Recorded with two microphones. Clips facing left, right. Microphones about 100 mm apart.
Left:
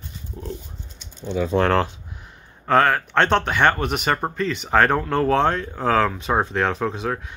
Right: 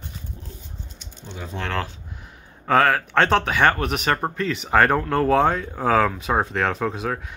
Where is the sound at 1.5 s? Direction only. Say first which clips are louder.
Left 12 dB; 70° left (ahead or behind).